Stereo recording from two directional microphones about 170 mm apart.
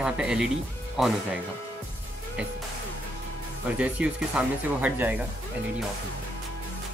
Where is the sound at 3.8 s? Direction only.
5° right (ahead or behind).